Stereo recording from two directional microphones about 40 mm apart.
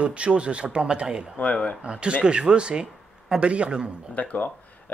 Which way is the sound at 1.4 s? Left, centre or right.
Left.